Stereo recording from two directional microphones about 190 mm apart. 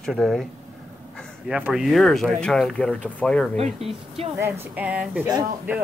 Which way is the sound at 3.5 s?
30° right (ahead or behind).